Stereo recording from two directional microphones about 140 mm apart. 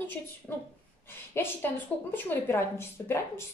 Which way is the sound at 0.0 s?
15° left (ahead or behind).